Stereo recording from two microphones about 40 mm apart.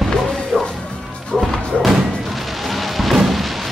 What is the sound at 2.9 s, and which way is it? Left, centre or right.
Artillery fire, centre.